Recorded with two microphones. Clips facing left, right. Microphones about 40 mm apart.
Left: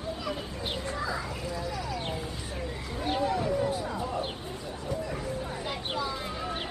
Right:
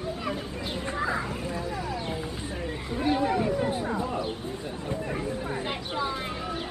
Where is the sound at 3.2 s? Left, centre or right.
Right.